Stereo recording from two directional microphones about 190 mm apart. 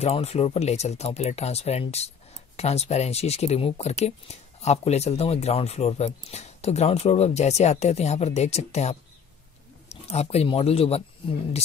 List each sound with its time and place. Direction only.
0.0 s speech: 35° left (ahead or behind)